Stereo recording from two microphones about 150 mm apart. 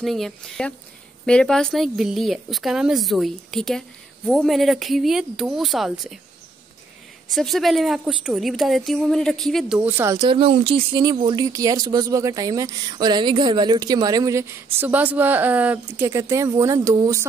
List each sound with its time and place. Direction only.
0.0 s speech: centre (ahead or behind)
7.2 s speech: centre (ahead or behind)
9.8 s speech: 15° right (ahead or behind)
10.2 s speech: 40° right (ahead or behind)
11.0 s speech: 25° right (ahead or behind)